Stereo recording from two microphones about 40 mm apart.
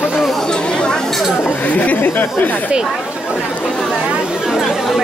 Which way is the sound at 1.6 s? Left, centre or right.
Left.